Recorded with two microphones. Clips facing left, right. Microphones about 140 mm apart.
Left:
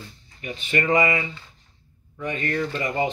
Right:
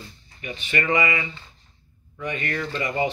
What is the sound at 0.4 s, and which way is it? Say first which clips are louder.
Speech: left 2 dB; 35° left (ahead or behind).